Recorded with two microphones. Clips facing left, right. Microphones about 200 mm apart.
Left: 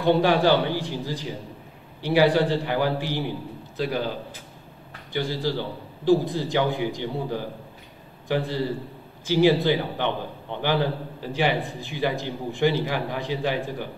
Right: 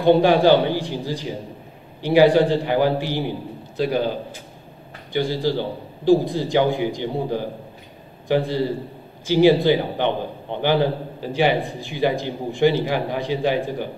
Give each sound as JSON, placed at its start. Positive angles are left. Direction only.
{"t": 0.0, "sound": "a man's voice", "side_deg": -20}